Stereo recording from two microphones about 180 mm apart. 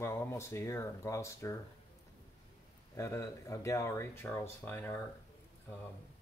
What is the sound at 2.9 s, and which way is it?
Speech, 15° left (ahead or behind).